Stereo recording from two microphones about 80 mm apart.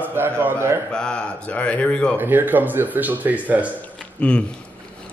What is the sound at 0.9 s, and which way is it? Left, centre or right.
Speech, centre.